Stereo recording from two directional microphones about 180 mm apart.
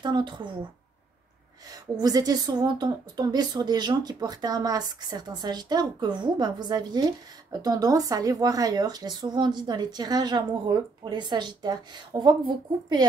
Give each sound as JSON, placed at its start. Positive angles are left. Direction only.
{"t": 0.0, "sound": "a woman's voice", "side_deg": -25}
{"t": 1.7, "sound": "a woman's voice", "side_deg": -20}